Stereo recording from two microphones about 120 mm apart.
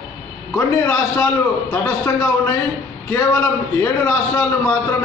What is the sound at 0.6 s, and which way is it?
A man's voice, 20° left (ahead or behind).